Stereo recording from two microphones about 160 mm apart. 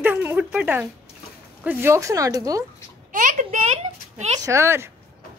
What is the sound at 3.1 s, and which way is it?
Speech, 55° right (ahead or behind).